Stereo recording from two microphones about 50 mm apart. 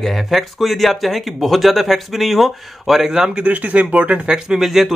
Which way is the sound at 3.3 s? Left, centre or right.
Right.